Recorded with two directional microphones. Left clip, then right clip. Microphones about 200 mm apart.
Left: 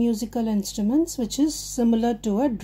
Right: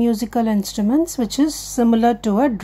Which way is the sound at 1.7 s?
10° right (ahead or behind).